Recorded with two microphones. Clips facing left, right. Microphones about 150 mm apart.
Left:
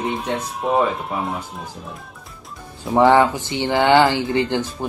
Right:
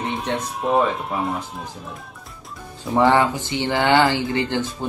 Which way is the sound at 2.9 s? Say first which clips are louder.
Left 3 dB; 15° left (ahead or behind).